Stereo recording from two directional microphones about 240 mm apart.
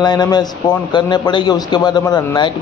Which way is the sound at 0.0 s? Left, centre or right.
Centre.